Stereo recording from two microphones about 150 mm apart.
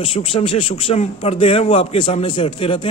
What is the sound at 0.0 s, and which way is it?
Speech, 40° left (ahead or behind).